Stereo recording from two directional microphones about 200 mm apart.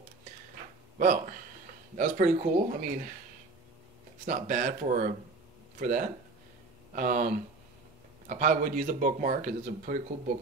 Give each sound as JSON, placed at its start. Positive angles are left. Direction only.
{"t": 0.9, "sound": "speech", "side_deg": -40}
{"t": 4.3, "sound": "speech", "side_deg": -45}